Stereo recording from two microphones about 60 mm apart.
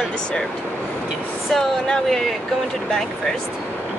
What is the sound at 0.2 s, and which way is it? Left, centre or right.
Speech, centre.